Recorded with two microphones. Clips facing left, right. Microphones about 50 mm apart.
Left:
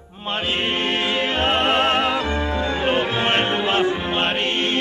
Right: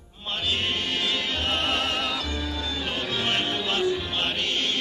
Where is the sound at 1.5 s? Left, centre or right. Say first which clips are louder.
Left 8 dB; left.